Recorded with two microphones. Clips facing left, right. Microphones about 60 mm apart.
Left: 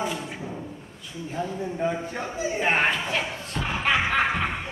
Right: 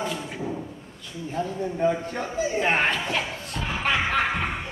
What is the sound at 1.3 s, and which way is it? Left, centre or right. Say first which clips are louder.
Speech: right 2 dB; centre.